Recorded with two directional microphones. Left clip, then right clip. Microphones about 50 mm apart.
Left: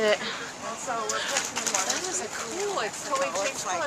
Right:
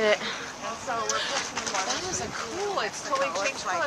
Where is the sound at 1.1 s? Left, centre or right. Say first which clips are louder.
Right 2 dB; right.